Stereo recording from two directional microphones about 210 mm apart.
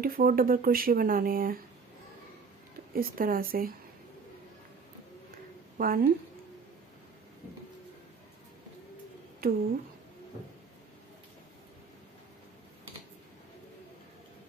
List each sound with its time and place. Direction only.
0.0 s speech: 45° right (ahead or behind)
2.9 s speech: 45° right (ahead or behind)
5.8 s speech: 45° right (ahead or behind)
9.4 s speech: 45° right (ahead or behind)